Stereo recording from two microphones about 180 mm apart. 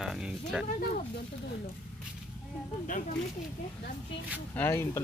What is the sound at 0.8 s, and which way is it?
Speech, 55° left (ahead or behind).